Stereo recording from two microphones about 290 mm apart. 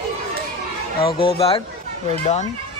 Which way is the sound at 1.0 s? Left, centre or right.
Centre.